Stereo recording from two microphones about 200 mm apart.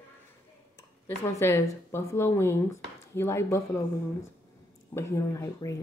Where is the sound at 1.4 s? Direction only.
15° left (ahead or behind).